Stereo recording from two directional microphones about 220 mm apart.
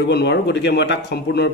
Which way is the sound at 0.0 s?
50° left (ahead or behind).